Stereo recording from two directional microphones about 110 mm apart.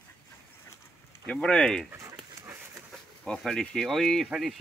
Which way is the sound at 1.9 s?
25° right (ahead or behind).